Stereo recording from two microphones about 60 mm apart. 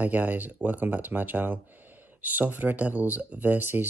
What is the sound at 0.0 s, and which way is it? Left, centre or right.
Speech, right.